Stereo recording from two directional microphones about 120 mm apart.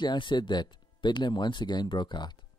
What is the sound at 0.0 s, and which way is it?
Speech, 40° left (ahead or behind).